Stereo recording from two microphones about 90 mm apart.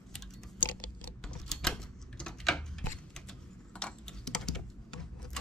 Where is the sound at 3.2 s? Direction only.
10° left (ahead or behind).